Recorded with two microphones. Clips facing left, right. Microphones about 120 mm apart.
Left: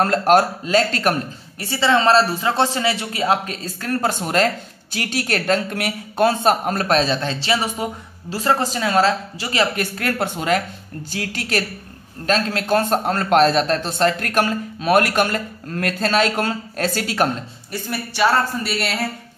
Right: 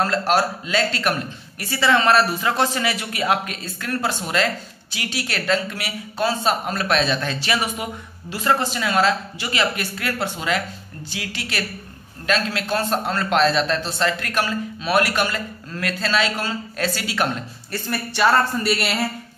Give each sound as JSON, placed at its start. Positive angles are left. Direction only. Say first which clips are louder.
{"t": 0.0, "sound": "a man's voice", "louder": "left 4 dB", "side_deg": 50}
{"t": 1.6, "sound": "a man's voice", "louder": "left 2 dB", "side_deg": 25}
{"t": 17.8, "sound": "speech", "louder": "even", "side_deg": 5}